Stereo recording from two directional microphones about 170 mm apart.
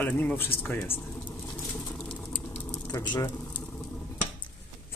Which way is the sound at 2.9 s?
20° left (ahead or behind).